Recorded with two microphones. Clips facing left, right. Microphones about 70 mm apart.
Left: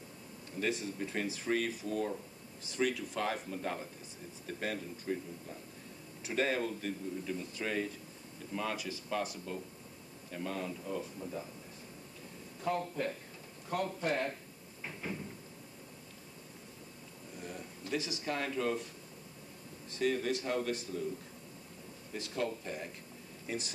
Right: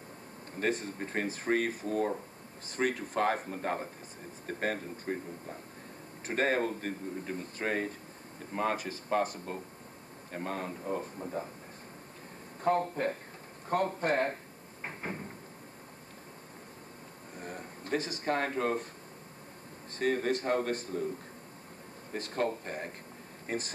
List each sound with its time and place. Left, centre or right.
0.6 s a man's voice: right
12.6 s a man's voice: right
13.7 s drawer open or close: right
17.4 s speech: right
20.0 s a man's voice: right
22.1 s a man's voice: right